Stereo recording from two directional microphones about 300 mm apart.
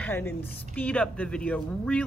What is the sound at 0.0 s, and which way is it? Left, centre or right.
A woman's voice, centre.